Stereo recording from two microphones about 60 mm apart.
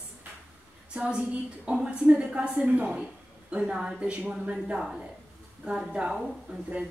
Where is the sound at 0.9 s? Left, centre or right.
Centre.